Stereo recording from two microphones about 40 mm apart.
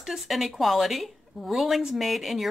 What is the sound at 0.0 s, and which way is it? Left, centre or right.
Speech, centre.